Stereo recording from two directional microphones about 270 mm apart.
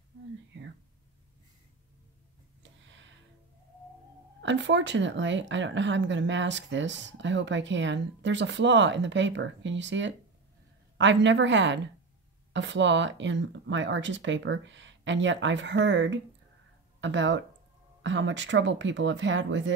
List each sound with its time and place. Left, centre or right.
4.4 s speech: right